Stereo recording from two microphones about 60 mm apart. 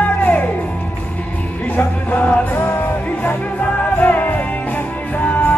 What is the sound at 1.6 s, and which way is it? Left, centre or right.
Music, left.